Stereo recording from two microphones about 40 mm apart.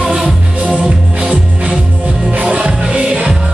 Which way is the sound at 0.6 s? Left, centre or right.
Right.